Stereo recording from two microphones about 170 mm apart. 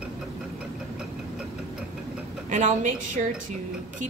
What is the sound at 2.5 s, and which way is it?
Speech, 45° right (ahead or behind).